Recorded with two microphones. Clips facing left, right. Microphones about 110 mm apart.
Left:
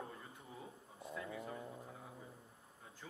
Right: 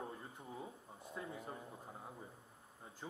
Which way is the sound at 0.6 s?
10° right (ahead or behind).